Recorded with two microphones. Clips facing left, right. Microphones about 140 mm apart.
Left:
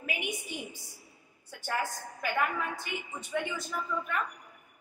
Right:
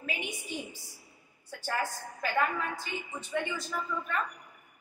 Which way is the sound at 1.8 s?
20° left (ahead or behind).